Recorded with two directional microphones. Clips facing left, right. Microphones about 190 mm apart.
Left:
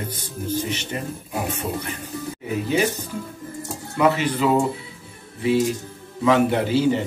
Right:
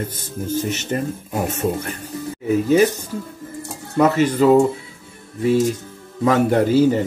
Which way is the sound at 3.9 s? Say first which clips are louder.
Right 4 dB; 45° right (ahead or behind).